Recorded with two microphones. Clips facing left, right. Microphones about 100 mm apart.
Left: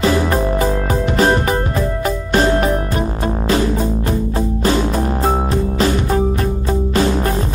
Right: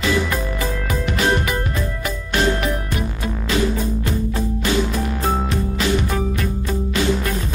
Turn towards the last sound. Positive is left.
turn(degrees=35)  # may be behind; listen again after turning